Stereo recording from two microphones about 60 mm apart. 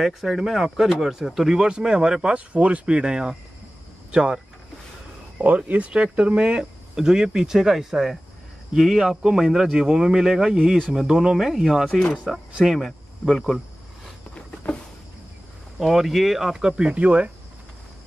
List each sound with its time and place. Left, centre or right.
0.0 s speech: centre
5.7 s speech: right; by 12.0 s centre
12.0 s speech: centre
12.5 s speech: centre
15.8 s speech: centre; by 17.3 s right